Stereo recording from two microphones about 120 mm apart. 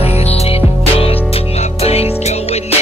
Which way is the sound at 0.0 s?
55° left (ahead or behind).